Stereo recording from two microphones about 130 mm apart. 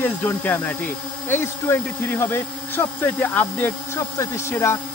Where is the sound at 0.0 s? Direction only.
10° left (ahead or behind).